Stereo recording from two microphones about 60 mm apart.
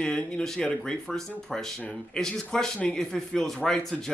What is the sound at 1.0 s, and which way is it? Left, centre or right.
Speech, centre.